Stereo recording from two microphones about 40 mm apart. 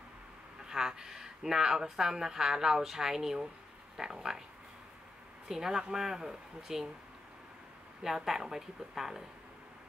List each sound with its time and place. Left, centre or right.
0.7 s speech: centre
5.5 s speech: centre
8.0 s speech: centre